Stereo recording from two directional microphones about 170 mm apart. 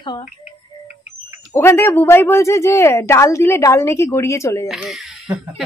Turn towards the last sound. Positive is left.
turn(degrees=-5)  # may be behind; listen again after turning